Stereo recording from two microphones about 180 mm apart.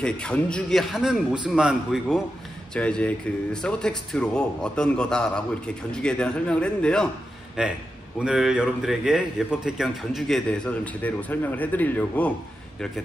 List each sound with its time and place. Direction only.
0.0 s a man's voice: 5° left (ahead or behind)
7.6 s a man's voice: 5° right (ahead or behind)